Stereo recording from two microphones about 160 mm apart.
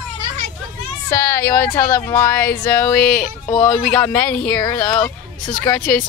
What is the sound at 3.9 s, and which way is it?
Speech, 5° left (ahead or behind).